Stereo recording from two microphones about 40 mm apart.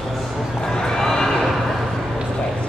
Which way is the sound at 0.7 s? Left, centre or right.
Centre.